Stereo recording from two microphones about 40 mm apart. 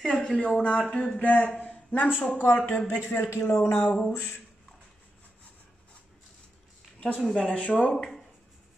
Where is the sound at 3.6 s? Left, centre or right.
Left.